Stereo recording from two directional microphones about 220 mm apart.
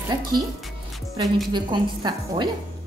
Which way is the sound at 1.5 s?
20° right (ahead or behind).